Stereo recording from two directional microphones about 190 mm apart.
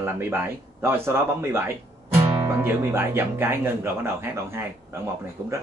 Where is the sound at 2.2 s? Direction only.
15° right (ahead or behind).